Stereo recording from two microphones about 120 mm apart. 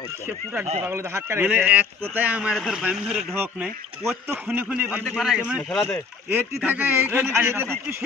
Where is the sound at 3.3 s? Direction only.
15° right (ahead or behind).